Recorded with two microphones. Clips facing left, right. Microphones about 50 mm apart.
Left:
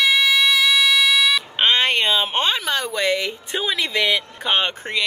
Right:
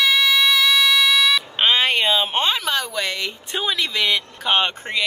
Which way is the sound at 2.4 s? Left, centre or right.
Centre.